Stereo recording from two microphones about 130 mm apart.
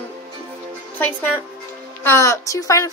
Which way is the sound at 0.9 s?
15° left (ahead or behind).